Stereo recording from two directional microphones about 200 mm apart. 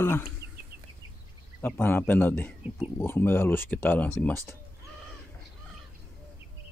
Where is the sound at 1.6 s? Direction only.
10° left (ahead or behind).